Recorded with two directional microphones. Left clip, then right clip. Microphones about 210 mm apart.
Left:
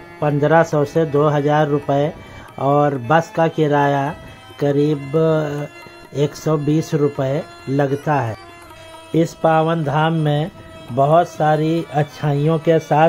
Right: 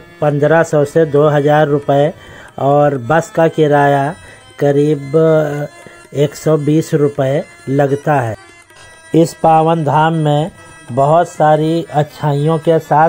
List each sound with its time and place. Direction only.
0.2 s speech: 10° right (ahead or behind)